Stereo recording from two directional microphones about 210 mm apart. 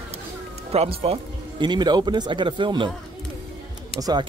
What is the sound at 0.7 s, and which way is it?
Speech, 30° right (ahead or behind).